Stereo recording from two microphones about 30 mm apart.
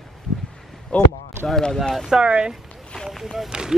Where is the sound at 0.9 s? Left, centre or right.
Left.